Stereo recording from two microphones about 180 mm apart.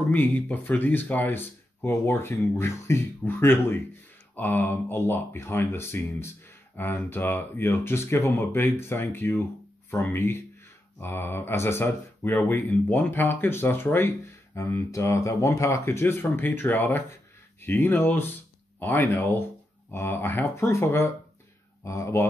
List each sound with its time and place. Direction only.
0.1 s speech: 10° left (ahead or behind)